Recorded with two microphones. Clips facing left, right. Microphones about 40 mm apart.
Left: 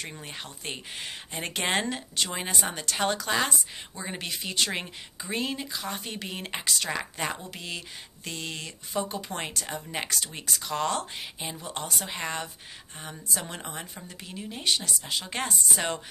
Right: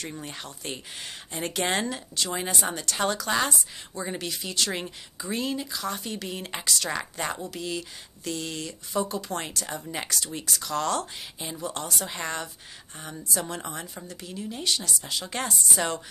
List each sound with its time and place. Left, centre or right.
0.0 s speech: centre
2.3 s a woman's voice: centre
10.0 s a woman's voice: left